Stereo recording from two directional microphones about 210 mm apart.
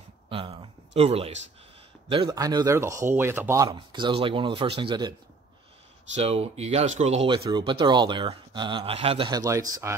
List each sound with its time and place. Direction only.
0.3 s a man's voice: 25° right (ahead or behind)
6.1 s speech: 30° right (ahead or behind)